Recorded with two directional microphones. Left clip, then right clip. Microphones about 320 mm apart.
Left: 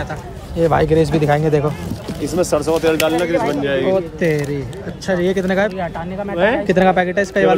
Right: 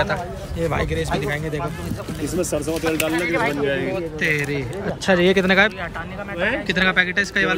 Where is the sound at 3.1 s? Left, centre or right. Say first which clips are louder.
Left 4 dB; centre.